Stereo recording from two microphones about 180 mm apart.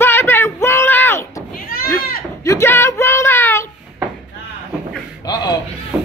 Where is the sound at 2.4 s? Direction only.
15° left (ahead or behind).